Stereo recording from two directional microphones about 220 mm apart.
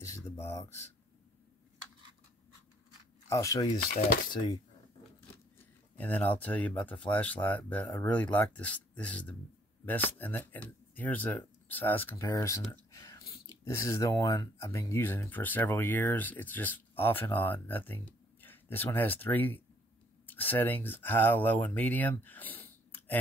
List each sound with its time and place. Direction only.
0.0 s a sound: 15° left (ahead or behind)
3.3 s speech: 15° left (ahead or behind)
5.9 s speech: 5° left (ahead or behind)